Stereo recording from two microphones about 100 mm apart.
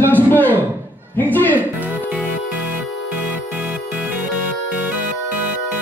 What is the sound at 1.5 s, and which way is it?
Music, 15° right (ahead or behind).